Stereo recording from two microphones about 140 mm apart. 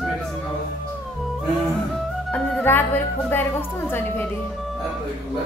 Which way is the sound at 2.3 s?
10° left (ahead or behind).